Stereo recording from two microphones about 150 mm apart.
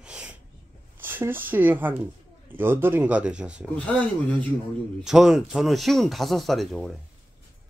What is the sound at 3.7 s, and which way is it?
Speech, 10° left (ahead or behind).